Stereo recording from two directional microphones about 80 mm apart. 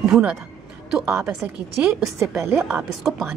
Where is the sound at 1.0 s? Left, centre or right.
Right.